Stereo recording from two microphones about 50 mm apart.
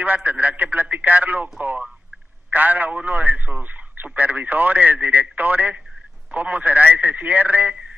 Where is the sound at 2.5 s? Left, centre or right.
Right.